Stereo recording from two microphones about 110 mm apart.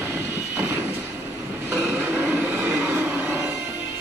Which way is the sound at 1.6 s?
15° right (ahead or behind).